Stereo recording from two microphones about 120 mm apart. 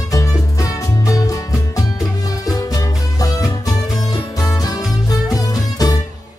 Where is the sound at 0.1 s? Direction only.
30° left (ahead or behind).